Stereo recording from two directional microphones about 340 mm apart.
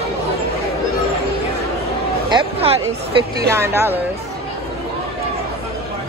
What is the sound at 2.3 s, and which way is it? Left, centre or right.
Speech, centre.